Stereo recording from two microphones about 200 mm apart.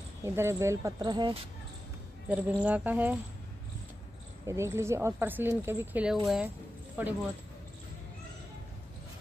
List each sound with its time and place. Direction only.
0.2 s speech: 15° right (ahead or behind)
2.2 s speech: 5° right (ahead or behind)
4.5 s speech: 15° right (ahead or behind)